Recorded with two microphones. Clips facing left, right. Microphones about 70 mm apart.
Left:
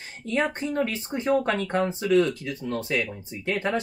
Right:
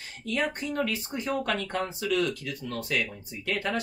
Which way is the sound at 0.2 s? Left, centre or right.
Left.